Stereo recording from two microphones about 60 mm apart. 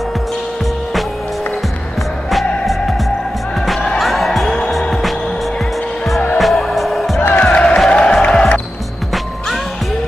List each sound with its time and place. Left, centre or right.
2.3 s music: centre
4.0 s music: centre
6.3 s music: centre
7.2 s music: left
7.5 s music: centre